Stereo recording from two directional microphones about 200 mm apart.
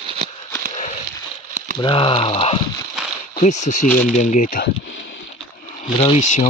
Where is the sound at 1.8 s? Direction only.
25° left (ahead or behind).